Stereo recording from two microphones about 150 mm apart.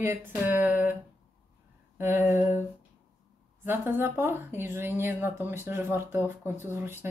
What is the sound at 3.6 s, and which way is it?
Speech, 15° right (ahead or behind).